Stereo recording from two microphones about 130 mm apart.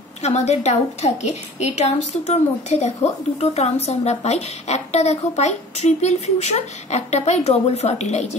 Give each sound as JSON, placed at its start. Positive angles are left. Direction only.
{"t": 0.2, "sound": "speech", "side_deg": 60}